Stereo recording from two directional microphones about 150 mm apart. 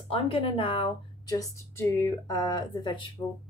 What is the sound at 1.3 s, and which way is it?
A woman's voice, 20° left (ahead or behind).